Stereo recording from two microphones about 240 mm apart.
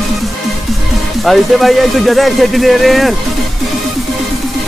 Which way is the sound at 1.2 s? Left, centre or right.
Centre.